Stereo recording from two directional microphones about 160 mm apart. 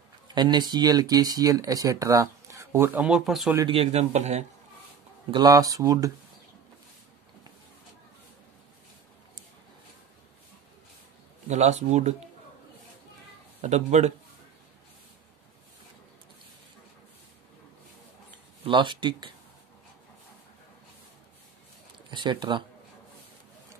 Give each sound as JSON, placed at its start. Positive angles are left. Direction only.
{"t": 0.3, "sound": "speech", "side_deg": -25}
{"t": 3.6, "sound": "speech", "side_deg": -35}
{"t": 5.3, "sound": "speech", "side_deg": -25}
{"t": 11.4, "sound": "speech", "side_deg": -45}
{"t": 13.6, "sound": "speech", "side_deg": -45}
{"t": 18.6, "sound": "speech", "side_deg": -30}
{"t": 22.1, "sound": "speech", "side_deg": -30}